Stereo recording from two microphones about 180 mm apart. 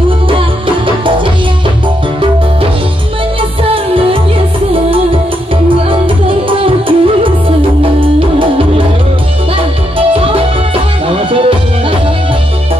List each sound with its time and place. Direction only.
0.3 s music: 30° right (ahead or behind)
3.7 s music: 30° right (ahead or behind)
5.9 s music: 30° right (ahead or behind)
9.9 s music: 30° right (ahead or behind)